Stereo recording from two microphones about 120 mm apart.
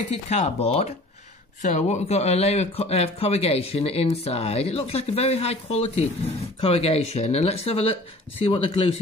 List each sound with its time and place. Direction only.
0.1 s speech: 65° left (ahead or behind)
1.6 s speech: 80° left; by 8.9 s 50° left (ahead or behind)